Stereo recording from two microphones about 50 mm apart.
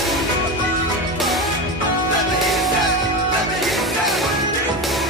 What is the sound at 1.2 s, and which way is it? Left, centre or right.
Music, centre.